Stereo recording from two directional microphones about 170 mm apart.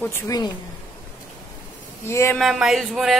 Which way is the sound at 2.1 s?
15° left (ahead or behind).